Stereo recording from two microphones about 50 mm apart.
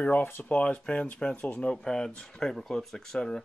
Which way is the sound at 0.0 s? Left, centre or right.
Left.